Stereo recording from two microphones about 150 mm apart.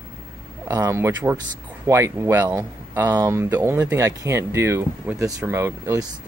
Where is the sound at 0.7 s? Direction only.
20° right (ahead or behind).